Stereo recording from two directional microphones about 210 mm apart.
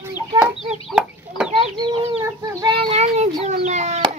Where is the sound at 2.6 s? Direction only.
25° right (ahead or behind).